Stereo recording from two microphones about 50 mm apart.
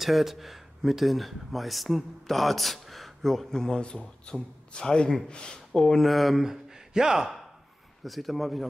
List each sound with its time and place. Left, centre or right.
0.0 s speech: centre
3.7 s speech: centre
6.0 s a man's voice: centre